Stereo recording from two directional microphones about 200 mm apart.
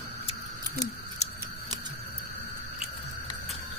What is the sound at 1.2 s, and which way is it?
Scissors, 35° left (ahead or behind).